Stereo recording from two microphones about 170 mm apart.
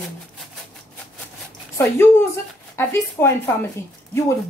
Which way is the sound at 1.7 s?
15° left (ahead or behind).